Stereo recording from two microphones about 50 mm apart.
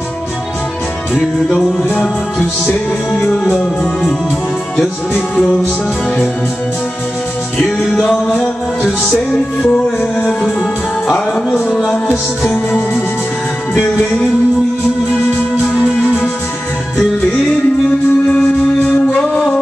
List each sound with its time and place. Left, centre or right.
7.9 s music: centre
9.8 s music: centre
11.5 s music: centre
17.8 s music: left